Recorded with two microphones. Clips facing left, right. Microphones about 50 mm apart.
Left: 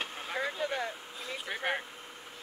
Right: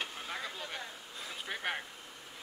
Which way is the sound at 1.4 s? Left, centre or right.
Centre.